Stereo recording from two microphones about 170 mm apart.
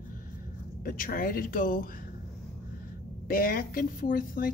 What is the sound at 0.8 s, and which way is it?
Speech, 60° left (ahead or behind).